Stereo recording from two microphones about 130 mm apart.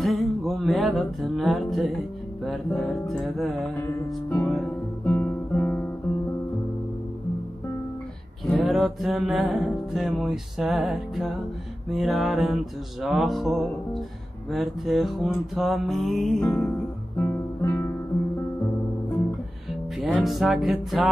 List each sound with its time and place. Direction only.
0.0 s music: centre (ahead or behind)
3.8 s music: 15° left (ahead or behind)
5.0 s guitar: 15° left (ahead or behind)
8.5 s music: centre (ahead or behind)
17.2 s guitar: 15° left (ahead or behind)
20.0 s music: centre (ahead or behind)